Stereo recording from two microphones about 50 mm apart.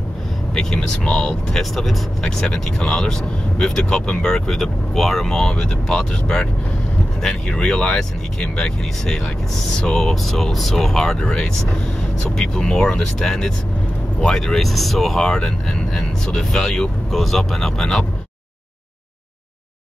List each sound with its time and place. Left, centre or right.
0.6 s speech: centre
1.6 s speech: centre
11.1 s speech: centre